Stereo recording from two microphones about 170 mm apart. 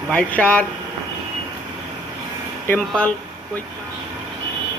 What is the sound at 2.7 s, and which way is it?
Speech, 10° left (ahead or behind).